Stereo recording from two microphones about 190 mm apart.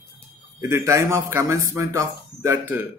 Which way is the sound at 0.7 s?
15° right (ahead or behind).